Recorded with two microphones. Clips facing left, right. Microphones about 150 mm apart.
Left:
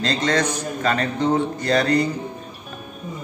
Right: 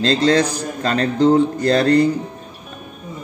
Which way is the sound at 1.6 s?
30° right (ahead or behind).